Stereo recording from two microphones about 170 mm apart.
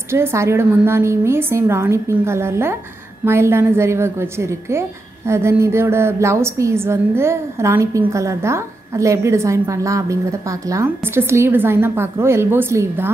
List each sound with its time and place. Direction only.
0.1 s a woman's voice: 15° right (ahead or behind)